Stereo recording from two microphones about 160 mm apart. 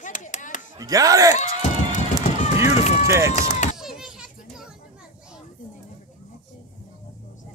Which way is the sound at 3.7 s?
5° right (ahead or behind).